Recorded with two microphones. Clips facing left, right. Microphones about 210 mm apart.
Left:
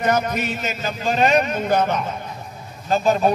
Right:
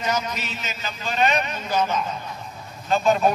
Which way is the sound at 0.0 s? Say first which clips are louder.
Left 6 dB; 55° left (ahead or behind).